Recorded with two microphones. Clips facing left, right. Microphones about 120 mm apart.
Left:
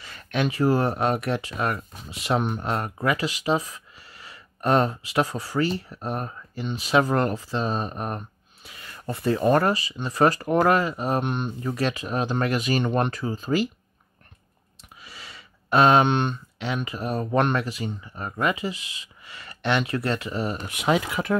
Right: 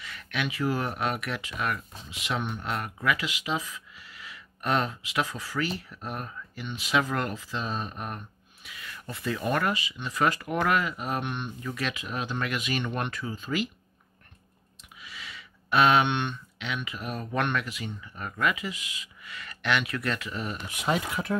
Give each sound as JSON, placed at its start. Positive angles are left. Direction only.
{"t": 0.0, "sound": "speech", "side_deg": 35}
{"t": 15.0, "sound": "speech", "side_deg": 35}
{"t": 20.7, "sound": "speech", "side_deg": 85}